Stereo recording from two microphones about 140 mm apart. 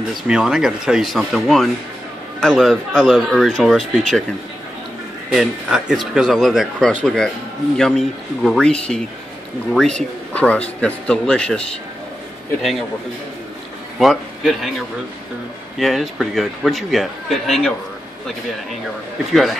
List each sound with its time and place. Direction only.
0.3 s a man's voice: 5° right (ahead or behind)
5.3 s a man's voice: 5° right (ahead or behind)
13.9 s a man's voice: centre (ahead or behind)
15.8 s a man's voice: centre (ahead or behind)
19.3 s a man's voice: centre (ahead or behind)